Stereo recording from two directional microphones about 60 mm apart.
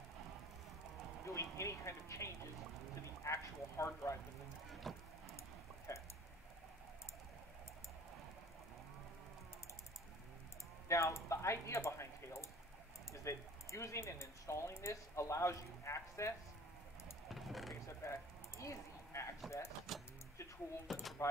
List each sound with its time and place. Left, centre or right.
1.2 s speech: left
4.9 s vehicle: centre
5.9 s speech: left
10.9 s a sound: left
13.1 s speech: left
17.3 s a sound: centre
18.0 s a sound: left
19.4 s speech: centre
20.8 s speech: centre